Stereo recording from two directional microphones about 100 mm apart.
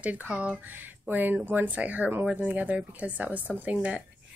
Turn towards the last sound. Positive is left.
turn(degrees=-10)  # may be behind; listen again after turning